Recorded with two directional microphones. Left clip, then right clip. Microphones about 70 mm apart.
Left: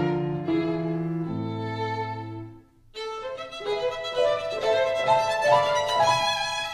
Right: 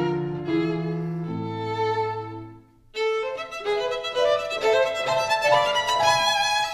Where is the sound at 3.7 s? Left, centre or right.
Left.